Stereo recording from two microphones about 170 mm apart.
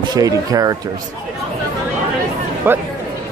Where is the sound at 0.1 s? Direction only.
20° right (ahead or behind).